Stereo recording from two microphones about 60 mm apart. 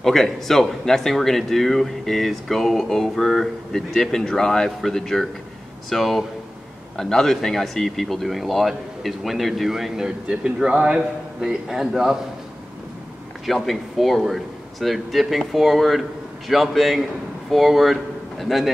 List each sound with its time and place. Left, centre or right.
0.0 s speech: centre
11.4 s a man's voice: centre
13.5 s speech: centre